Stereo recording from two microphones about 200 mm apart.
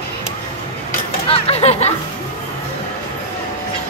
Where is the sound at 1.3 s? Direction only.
30° left (ahead or behind).